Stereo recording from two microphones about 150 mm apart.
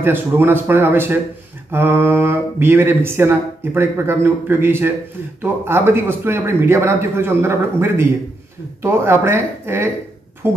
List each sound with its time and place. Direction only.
0.0 s speech: 15° right (ahead or behind)